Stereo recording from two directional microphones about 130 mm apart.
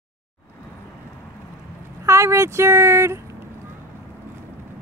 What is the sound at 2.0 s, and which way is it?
Speech, 20° right (ahead or behind).